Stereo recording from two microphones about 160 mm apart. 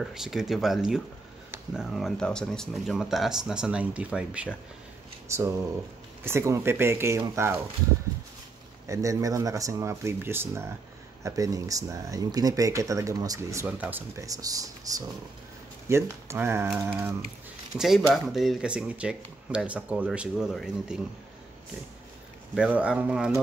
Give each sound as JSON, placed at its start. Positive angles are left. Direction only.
{"t": 0.0, "sound": "speech", "side_deg": 0}
{"t": 5.3, "sound": "speech", "side_deg": -20}
{"t": 8.8, "sound": "speech", "side_deg": -20}
{"t": 17.7, "sound": "speech", "side_deg": 0}
{"t": 22.6, "sound": "speech", "side_deg": -5}